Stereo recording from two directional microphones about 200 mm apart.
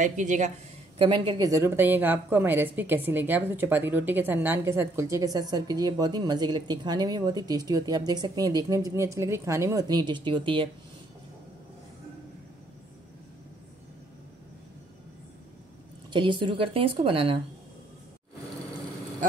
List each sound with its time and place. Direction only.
0.0 s speech: 40° right (ahead or behind)
0.9 s a woman's voice: 25° right (ahead or behind)
16.1 s a woman's voice: 25° right (ahead or behind)